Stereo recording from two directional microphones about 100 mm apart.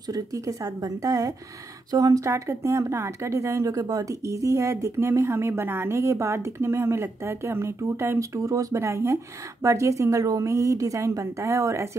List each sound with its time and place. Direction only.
0.1 s a woman's voice: 35° right (ahead or behind)